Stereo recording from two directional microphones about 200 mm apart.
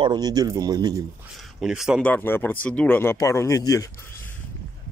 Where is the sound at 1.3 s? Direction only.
Centre (ahead or behind); by 3.9 s 15° left (ahead or behind).